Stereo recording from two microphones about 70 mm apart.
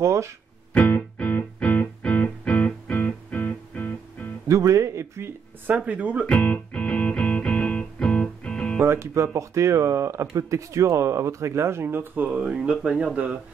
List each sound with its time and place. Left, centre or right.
0.0 s speech: right
0.7 s music: centre
4.5 s a sound: right
5.9 s speech: right
6.2 s music: left
8.8 s speech: right
12.3 s speech: centre